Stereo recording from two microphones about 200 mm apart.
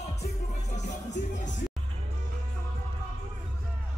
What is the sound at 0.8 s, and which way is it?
Music, 35° left (ahead or behind).